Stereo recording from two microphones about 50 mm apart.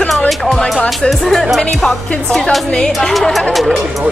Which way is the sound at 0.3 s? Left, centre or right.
Centre.